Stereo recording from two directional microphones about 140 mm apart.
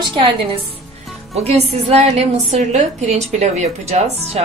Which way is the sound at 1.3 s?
45° right (ahead or behind).